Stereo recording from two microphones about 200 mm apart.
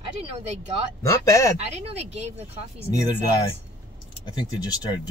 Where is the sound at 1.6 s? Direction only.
30° right (ahead or behind).